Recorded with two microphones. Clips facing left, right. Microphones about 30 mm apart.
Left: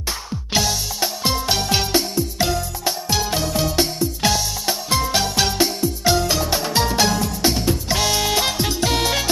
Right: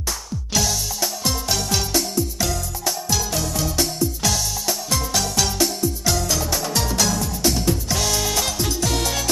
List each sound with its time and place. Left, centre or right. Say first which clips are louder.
0.0 s music: left 1 dB; left